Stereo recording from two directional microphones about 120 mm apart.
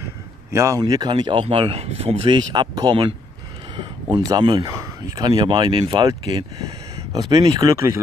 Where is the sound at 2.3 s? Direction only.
35° right (ahead or behind).